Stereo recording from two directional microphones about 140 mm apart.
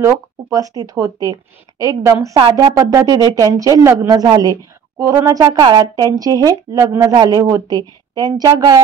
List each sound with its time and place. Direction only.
0.0 s speech: 25° right (ahead or behind)